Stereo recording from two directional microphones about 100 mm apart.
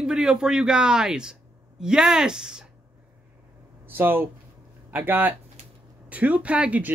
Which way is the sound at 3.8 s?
20° right (ahead or behind).